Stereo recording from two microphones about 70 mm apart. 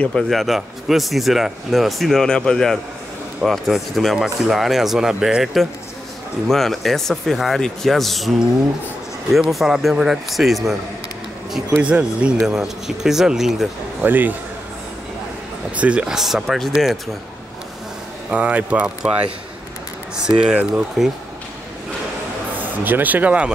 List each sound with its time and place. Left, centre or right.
0.2 s speech: centre
11.8 s speech: centre
14.0 s speech: right
15.7 s speech: centre
16.2 s speech: centre
18.3 s speech: right
20.2 s speech: centre
22.6 s speech: right